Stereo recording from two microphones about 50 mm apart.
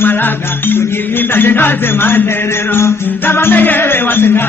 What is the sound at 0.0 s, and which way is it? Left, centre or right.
Music, left.